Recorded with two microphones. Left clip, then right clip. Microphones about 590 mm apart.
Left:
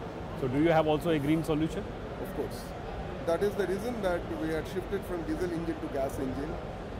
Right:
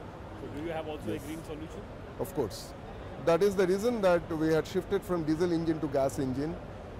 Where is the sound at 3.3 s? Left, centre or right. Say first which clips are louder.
Right 4 dB; right.